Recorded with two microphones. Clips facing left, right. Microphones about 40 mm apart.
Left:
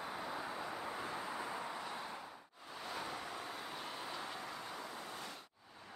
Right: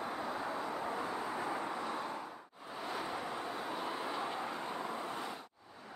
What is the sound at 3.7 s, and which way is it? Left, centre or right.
Vehicle, centre.